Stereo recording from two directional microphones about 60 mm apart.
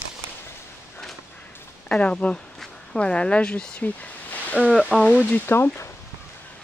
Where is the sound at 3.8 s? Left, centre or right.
Left.